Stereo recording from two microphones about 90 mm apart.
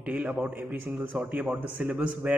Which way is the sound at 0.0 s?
15° right (ahead or behind).